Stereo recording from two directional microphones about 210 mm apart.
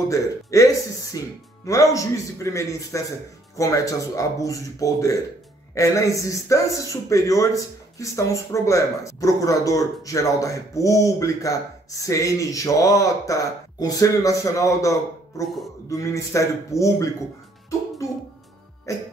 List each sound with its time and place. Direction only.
0.1 s a man's voice: 15° left (ahead or behind)
18.9 s a man's voice: 15° left (ahead or behind)